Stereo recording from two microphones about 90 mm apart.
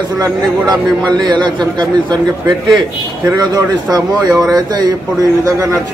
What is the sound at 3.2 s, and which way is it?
A man's voice, 45° right (ahead or behind).